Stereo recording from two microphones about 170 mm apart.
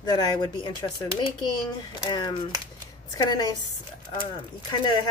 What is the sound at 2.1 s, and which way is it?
Speech, 25° left (ahead or behind).